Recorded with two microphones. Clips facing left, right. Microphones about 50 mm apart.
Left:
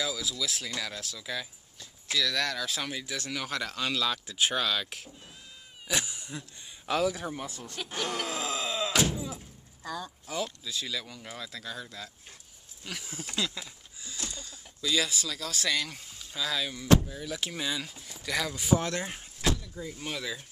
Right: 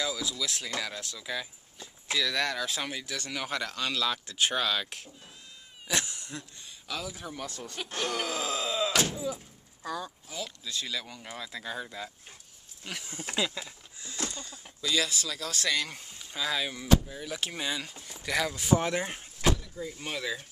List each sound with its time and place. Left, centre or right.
0.0 s speech: centre
7.0 s speech: left
7.2 s speech: centre
7.6 s speech: centre
8.6 s thunk: centre
10.2 s speech: left
10.6 s speech: centre